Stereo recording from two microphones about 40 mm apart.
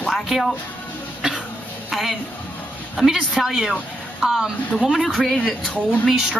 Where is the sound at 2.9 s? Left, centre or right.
Centre.